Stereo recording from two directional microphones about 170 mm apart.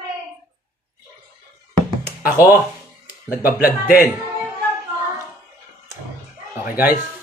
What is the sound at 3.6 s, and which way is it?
Speech, 55° left (ahead or behind).